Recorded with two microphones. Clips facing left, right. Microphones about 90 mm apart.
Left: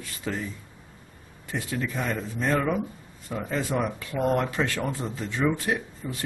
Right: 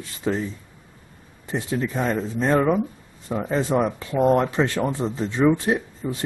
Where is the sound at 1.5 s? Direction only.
25° right (ahead or behind).